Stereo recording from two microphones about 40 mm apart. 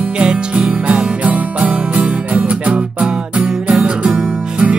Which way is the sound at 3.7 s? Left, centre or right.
Right.